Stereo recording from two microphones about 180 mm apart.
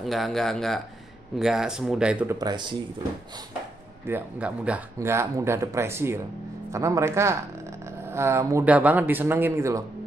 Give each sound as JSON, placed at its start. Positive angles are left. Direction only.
{"t": 0.0, "sound": "speech", "side_deg": 0}
{"t": 2.3, "sound": "speech", "side_deg": -20}
{"t": 4.1, "sound": "speech", "side_deg": -5}